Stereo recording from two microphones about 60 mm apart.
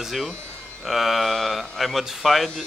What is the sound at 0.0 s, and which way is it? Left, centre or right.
Speech, centre.